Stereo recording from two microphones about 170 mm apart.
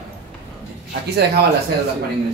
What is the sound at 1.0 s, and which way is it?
Speech, 70° right (ahead or behind).